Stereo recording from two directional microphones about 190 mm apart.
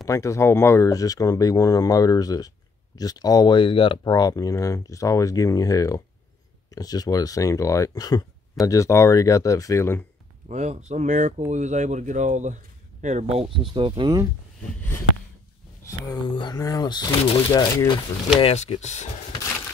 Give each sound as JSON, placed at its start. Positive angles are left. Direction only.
{"t": 0.0, "sound": "speech", "side_deg": 15}
{"t": 10.5, "sound": "speech", "side_deg": -35}
{"t": 14.8, "sound": "speech", "side_deg": 10}